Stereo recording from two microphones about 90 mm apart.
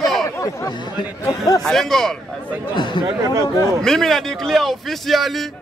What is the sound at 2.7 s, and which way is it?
Speech, 60° left (ahead or behind).